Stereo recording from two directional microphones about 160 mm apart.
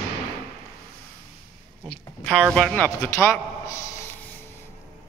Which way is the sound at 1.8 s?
5° left (ahead or behind).